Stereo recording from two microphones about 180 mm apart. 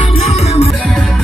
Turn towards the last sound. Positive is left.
turn(degrees=35)  # may be behind; listen again after turning